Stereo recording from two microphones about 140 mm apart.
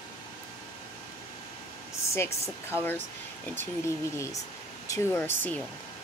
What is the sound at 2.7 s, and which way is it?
Speech, 15° left (ahead or behind).